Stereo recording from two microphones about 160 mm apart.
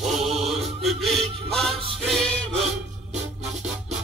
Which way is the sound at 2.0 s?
Centre (ahead or behind).